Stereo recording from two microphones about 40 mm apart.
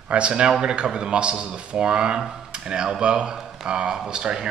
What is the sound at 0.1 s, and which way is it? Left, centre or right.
A man's voice, right.